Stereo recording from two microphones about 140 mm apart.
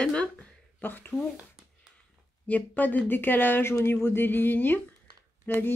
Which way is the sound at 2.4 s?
10° left (ahead or behind).